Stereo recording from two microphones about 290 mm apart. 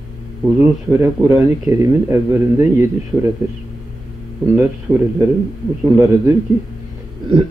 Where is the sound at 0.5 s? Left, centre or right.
Centre.